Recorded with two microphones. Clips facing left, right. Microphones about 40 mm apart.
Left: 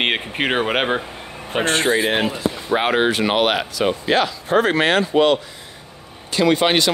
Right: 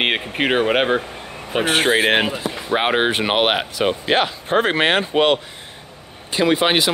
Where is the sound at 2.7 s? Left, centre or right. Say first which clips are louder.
Even; centre.